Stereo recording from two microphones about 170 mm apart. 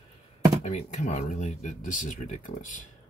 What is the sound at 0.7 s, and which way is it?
Speech, 45° left (ahead or behind).